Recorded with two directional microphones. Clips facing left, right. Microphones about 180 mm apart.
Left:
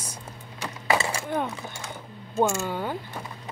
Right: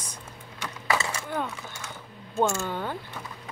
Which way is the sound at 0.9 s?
30° left (ahead or behind).